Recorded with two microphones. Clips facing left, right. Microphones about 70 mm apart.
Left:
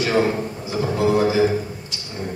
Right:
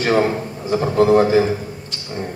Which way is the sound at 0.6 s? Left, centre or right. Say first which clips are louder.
Right 6 dB; right.